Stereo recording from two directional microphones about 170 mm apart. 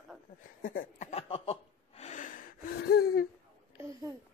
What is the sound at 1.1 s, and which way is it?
Laughter, 35° left (ahead or behind).